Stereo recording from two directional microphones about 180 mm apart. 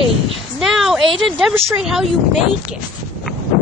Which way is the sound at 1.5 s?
15° right (ahead or behind).